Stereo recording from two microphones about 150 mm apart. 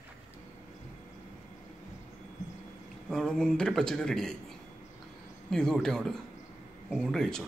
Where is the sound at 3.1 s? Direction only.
5° left (ahead or behind).